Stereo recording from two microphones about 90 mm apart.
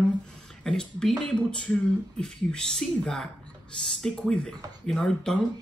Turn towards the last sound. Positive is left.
turn(degrees=5)  # may be behind; listen again after turning